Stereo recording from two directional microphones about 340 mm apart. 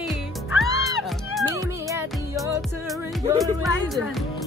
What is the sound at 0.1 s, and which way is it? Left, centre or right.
Music, centre.